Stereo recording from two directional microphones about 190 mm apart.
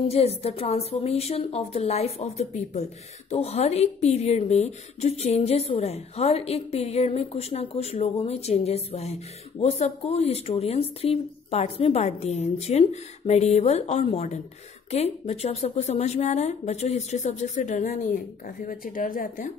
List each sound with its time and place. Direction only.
0.1 s a woman's voice: 30° left (ahead or behind)